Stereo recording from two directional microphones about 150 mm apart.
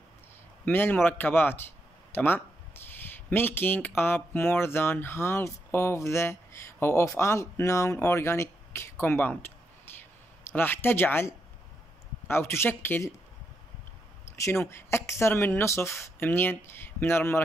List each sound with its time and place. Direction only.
0.7 s speech: 15° left (ahead or behind)
14.3 s speech: 20° left (ahead or behind)